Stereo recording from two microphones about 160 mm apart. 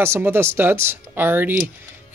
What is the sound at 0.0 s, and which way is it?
Speech, 15° right (ahead or behind).